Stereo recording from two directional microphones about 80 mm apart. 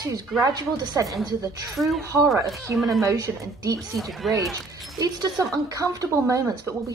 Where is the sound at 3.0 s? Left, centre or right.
Right.